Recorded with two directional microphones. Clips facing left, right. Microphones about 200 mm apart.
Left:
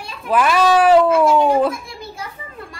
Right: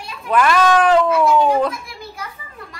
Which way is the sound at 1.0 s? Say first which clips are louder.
Left 1 dB; 25° left (ahead or behind).